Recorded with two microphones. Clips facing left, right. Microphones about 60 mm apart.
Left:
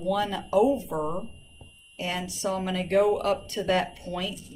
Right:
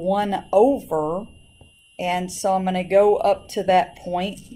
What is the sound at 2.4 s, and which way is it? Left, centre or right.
Speech, right.